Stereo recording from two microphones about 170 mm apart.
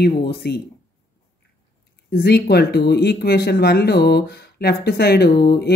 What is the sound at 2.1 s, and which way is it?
Speech, 70° left (ahead or behind).